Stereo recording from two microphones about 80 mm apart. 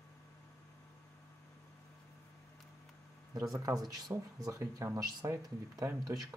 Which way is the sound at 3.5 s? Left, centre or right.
Right.